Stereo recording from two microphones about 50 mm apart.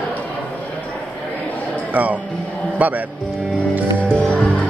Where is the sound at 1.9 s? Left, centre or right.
Right.